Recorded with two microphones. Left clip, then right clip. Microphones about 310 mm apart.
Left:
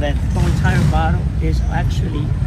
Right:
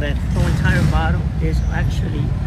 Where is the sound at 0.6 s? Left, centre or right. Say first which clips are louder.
Left 2 dB; centre.